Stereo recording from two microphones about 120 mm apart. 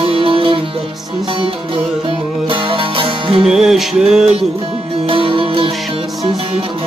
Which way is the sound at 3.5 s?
5° right (ahead or behind).